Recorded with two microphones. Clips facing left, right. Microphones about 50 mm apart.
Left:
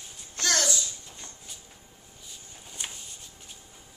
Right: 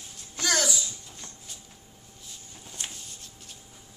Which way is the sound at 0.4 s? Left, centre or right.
Centre.